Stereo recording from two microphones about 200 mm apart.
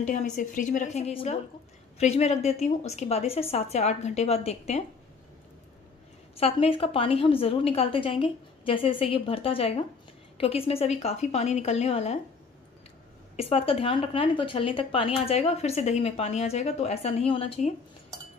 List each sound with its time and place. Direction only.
0.0 s a woman's voice: 40° left (ahead or behind)
6.3 s a woman's voice: 30° left (ahead or behind)
13.4 s a woman's voice: 30° left (ahead or behind)